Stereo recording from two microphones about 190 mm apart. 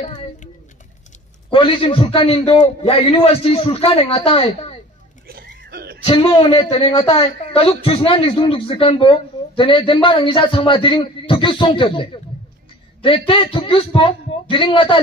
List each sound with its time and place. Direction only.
0.0 s speech: 25° left (ahead or behind)
1.5 s a man's voice: 25° left (ahead or behind)
5.2 s a sound: 55° right (ahead or behind)
6.0 s speech: 25° left (ahead or behind)
13.3 s speech: 25° left (ahead or behind)